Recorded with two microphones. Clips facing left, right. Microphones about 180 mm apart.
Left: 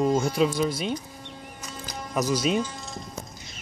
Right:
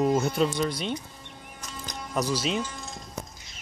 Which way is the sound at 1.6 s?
5° left (ahead or behind).